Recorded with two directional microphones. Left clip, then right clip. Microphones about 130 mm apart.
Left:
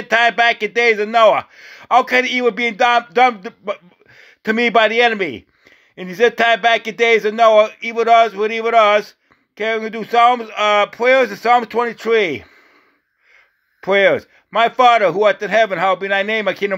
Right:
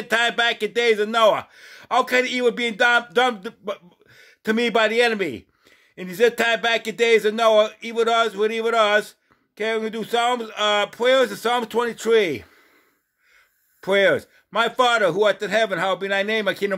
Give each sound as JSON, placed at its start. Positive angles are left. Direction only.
{"t": 0.0, "sound": "speech", "side_deg": 15}
{"t": 13.7, "sound": "speech", "side_deg": 20}